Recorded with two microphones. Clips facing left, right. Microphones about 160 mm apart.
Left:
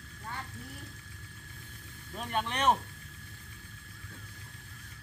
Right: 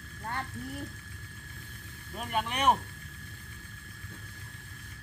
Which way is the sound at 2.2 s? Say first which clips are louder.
Right 1 dB; 10° right (ahead or behind).